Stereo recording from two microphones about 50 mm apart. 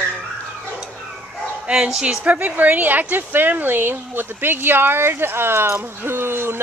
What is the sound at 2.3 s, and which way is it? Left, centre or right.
A woman's voice, right.